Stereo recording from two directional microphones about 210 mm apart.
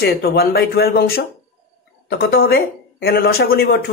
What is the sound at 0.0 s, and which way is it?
Speech, 50° left (ahead or behind).